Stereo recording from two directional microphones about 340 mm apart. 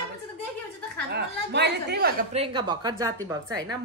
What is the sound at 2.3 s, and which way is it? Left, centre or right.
A woman's voice, centre.